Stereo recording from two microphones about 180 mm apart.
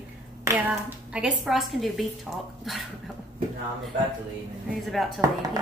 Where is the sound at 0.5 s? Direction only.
10° right (ahead or behind).